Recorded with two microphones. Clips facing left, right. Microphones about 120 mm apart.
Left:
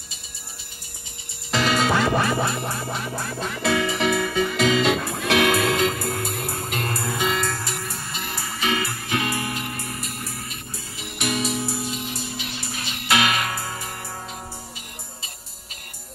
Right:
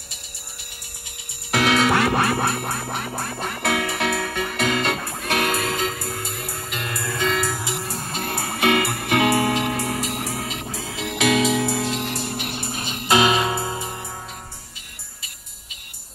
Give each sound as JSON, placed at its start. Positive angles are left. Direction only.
{"t": 1.5, "sound": "music", "side_deg": -60}
{"t": 4.9, "sound": "music", "side_deg": 80}
{"t": 6.9, "sound": "music", "side_deg": 30}
{"t": 7.3, "sound": "music", "side_deg": -5}
{"t": 7.8, "sound": "music", "side_deg": -40}